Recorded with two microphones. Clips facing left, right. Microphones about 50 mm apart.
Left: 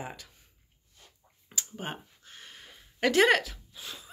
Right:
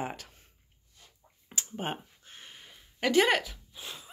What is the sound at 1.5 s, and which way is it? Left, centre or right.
Speech, right.